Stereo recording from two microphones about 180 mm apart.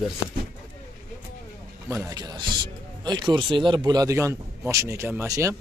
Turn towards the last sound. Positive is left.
turn(degrees=-15)  # may be behind; listen again after turning